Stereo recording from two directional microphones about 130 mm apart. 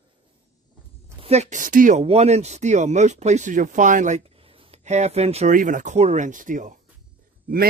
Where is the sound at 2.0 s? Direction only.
55° right (ahead or behind); by 4.2 s 70° right (ahead or behind).